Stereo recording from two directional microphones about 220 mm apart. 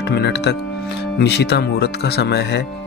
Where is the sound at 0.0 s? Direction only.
50° left (ahead or behind).